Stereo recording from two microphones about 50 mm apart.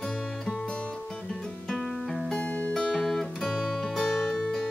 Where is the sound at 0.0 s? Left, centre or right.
Centre.